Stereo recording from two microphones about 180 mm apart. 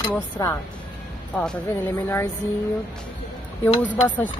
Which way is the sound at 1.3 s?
5° left (ahead or behind).